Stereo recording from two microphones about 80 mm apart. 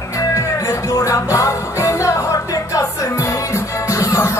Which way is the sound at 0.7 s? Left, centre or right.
Left.